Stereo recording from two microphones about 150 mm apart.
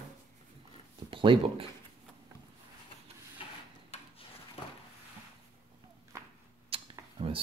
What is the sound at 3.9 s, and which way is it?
Rub, 40° left (ahead or behind).